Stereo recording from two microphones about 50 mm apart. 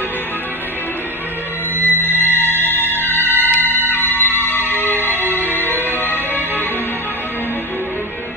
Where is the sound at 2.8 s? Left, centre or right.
Right.